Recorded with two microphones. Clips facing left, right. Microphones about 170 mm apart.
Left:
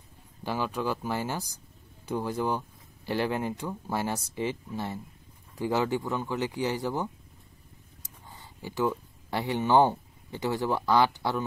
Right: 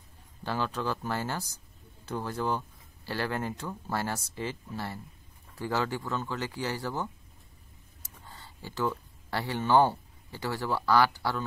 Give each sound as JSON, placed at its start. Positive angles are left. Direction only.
{"t": 0.4, "sound": "speech", "side_deg": 15}